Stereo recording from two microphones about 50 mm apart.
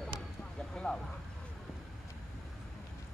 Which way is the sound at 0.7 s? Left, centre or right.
Centre.